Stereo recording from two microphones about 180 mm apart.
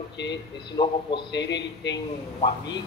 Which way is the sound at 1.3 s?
75° left (ahead or behind).